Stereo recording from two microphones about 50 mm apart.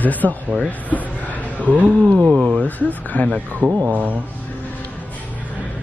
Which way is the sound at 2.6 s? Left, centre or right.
Left.